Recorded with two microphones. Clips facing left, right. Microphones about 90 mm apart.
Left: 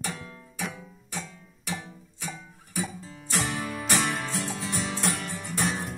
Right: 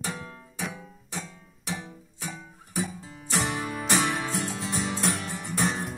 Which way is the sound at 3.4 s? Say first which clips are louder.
Right 1 dB; 30° right (ahead or behind).